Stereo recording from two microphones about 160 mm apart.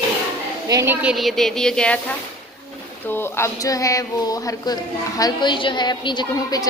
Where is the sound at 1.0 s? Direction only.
5° right (ahead or behind).